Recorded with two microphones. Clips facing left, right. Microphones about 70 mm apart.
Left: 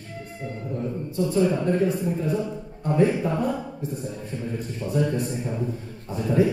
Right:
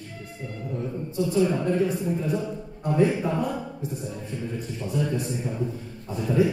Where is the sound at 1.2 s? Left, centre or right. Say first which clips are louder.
Left 1 dB; left.